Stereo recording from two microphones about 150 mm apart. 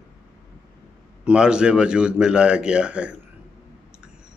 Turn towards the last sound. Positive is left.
turn(degrees=-5)  # may be behind; listen again after turning